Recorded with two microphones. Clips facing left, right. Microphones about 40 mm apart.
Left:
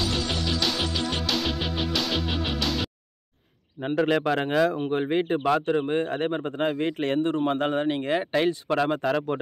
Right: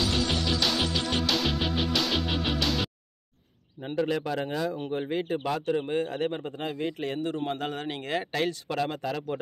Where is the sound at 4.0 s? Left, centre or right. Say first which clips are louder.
Left 5 dB; left.